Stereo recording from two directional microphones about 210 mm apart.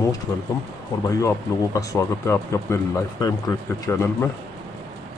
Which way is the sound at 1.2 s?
15° left (ahead or behind).